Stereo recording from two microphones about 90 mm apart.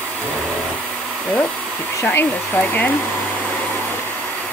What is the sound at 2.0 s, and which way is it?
Hair dryer, 20° left (ahead or behind).